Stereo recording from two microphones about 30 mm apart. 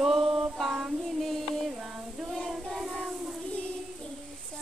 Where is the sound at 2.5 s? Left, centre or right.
Centre.